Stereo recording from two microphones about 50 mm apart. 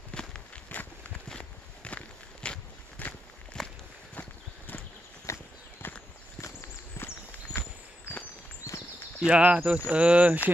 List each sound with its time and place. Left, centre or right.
0.1 s walk: centre
0.7 s a sound: left
1.4 s walk: left
3.0 s walk: left
3.6 s walk: centre
4.1 s clip-clop: left
5.3 s horse: left
7.5 s walk: left
9.2 s speech: right